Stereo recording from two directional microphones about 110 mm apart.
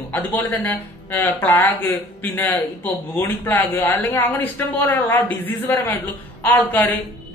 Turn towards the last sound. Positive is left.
turn(degrees=15)  # may be behind; listen again after turning